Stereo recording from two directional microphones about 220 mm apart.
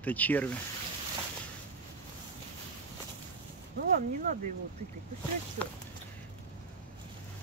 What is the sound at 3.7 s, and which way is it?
Speech, 40° right (ahead or behind).